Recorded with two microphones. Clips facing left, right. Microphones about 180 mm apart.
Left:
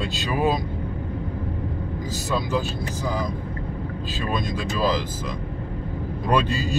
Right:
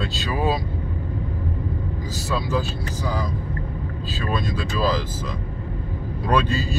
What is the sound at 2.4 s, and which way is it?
Speech, 15° left (ahead or behind).